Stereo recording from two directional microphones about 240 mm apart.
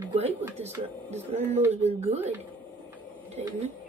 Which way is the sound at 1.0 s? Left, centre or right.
Right.